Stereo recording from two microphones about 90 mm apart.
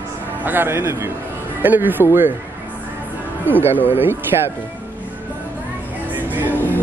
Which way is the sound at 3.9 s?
25° right (ahead or behind).